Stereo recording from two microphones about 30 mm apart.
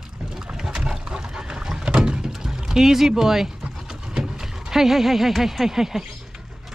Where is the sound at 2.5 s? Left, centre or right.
Centre.